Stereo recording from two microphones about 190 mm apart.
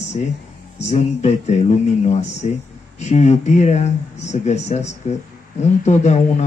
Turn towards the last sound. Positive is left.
turn(degrees=35)  # may be behind; listen again after turning